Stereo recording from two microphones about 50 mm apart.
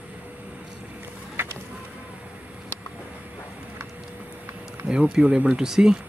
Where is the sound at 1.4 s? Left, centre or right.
Right.